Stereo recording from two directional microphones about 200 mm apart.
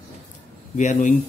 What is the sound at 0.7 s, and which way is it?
Speech, 40° left (ahead or behind).